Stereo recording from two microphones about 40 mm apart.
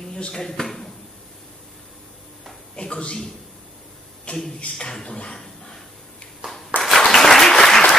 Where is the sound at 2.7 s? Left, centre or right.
Left.